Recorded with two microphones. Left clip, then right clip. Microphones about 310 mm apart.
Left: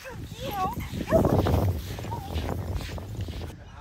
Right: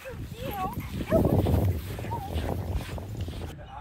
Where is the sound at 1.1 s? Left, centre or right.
Right.